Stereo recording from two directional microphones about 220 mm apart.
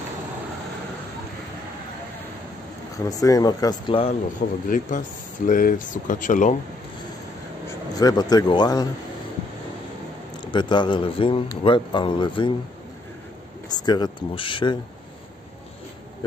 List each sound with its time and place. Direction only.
3.1 s speech: 15° left (ahead or behind)
4.6 s speech: 35° left (ahead or behind)
7.6 s speech: 15° left (ahead or behind)
10.4 s speech: 20° left (ahead or behind)
13.7 s speech: 20° left (ahead or behind)